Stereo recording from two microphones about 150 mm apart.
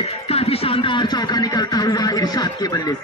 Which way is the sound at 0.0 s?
40° left (ahead or behind).